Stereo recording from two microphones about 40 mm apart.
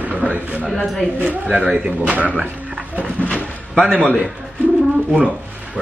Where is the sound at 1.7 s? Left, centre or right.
Right.